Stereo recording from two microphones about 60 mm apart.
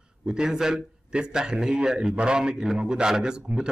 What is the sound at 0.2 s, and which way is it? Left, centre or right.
A man's voice, centre.